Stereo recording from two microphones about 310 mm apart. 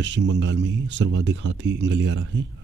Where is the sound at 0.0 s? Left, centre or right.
Right.